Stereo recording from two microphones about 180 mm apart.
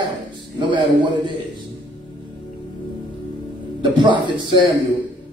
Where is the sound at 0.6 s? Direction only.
25° right (ahead or behind).